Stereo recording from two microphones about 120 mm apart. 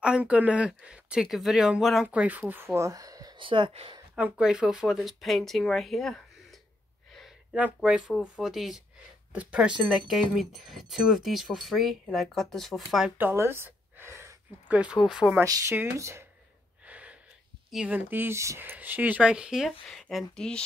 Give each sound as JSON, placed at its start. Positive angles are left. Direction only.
{"t": 0.0, "sound": "speech", "side_deg": -10}
{"t": 2.0, "sound": "speech", "side_deg": -10}
{"t": 3.3, "sound": "speech", "side_deg": -45}
{"t": 4.1, "sound": "speech", "side_deg": -10}
{"t": 7.1, "sound": "a sound", "side_deg": 0}
{"t": 7.5, "sound": "speech", "side_deg": -10}
{"t": 13.2, "sound": "gasp", "side_deg": -20}
{"t": 14.8, "sound": "speech", "side_deg": -5}
{"t": 15.4, "sound": "speech", "side_deg": -30}
{"t": 16.8, "sound": "gasp", "side_deg": -10}
{"t": 17.6, "sound": "speech", "side_deg": -5}
{"t": 17.9, "sound": "speech", "side_deg": -15}